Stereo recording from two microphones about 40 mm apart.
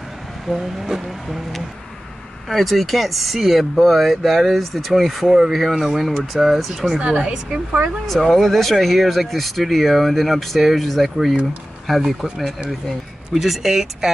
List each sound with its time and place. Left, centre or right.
0.6 s speech: centre
2.4 s speech: centre
7.0 s a woman's voice: right
8.1 s speech: centre